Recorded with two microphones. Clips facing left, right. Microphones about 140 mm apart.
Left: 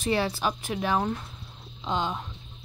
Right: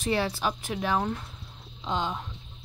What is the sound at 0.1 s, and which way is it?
Speech, 15° left (ahead or behind).